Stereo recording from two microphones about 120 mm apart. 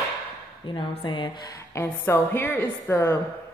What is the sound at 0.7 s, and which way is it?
Speech, 45° left (ahead or behind).